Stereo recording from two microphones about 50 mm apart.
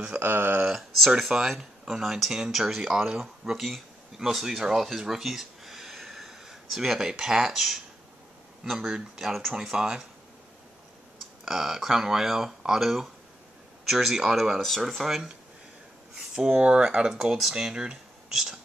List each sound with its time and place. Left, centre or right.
0.2 s speech: right
1.2 s speech: centre
11.1 s speech: centre
14.6 s speech: centre
16.5 s speech: centre